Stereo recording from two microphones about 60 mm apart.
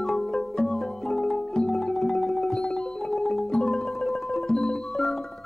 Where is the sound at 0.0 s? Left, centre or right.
Centre.